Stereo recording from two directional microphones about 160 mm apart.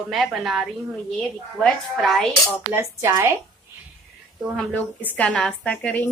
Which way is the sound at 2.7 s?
15° right (ahead or behind).